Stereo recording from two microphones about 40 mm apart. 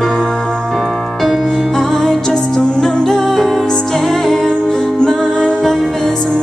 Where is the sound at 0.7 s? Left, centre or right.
Centre.